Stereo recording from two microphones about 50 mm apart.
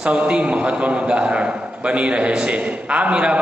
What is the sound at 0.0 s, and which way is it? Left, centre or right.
A man's voice, right.